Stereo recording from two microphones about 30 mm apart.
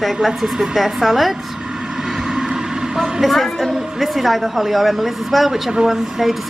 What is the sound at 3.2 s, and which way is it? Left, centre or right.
A woman's voice, centre.